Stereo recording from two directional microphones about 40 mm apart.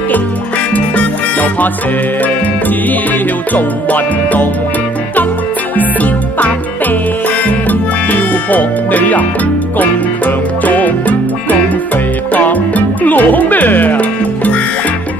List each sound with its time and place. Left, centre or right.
0.7 s music: left
2.9 s music: left
5.8 s music: left
8.1 s speech: left
9.8 s music: left
12.4 s music: left